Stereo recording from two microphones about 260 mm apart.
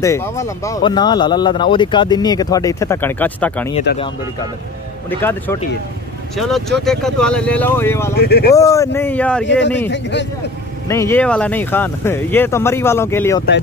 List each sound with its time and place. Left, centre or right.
0.0 s speech: centre
5.2 s speech: centre
8.2 s speech: left
8.5 s speech: centre
9.8 s a man's voice: left
10.9 s speech: centre